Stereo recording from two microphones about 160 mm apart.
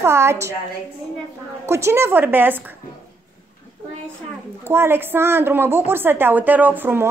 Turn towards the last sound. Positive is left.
turn(degrees=-15)  # may be behind; listen again after turning